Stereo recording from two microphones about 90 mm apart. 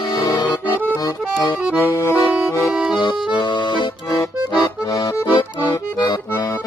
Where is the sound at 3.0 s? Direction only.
65° left (ahead or behind).